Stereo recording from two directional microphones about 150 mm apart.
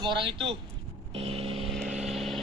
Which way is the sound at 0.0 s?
35° right (ahead or behind).